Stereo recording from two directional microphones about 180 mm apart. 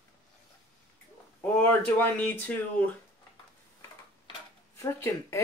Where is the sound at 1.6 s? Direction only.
10° left (ahead or behind).